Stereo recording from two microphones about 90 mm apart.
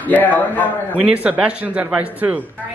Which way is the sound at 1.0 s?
15° right (ahead or behind).